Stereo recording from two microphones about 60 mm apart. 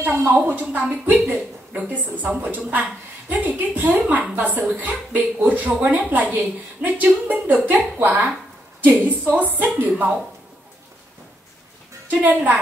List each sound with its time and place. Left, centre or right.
0.0 s a woman's voice: right
8.9 s a woman's voice: left
9.4 s speech: right
12.1 s speech: right